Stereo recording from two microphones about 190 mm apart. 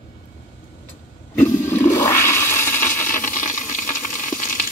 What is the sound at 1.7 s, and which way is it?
Toilet flush, 10° left (ahead or behind).